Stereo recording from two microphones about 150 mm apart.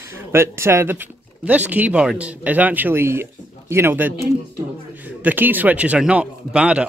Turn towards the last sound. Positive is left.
turn(degrees=-5)  # may be behind; listen again after turning